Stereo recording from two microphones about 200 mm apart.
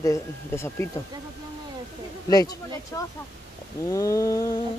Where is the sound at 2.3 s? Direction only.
20° left (ahead or behind).